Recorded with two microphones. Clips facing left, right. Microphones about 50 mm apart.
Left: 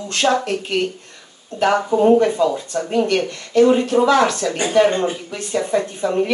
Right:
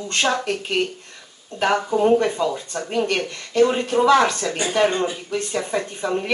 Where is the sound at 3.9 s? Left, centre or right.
Centre.